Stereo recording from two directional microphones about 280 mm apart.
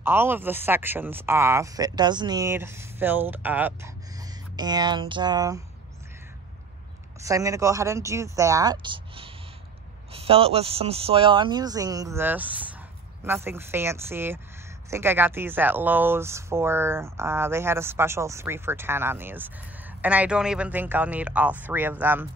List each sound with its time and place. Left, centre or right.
0.0 s speech: centre
7.2 s a man's voice: centre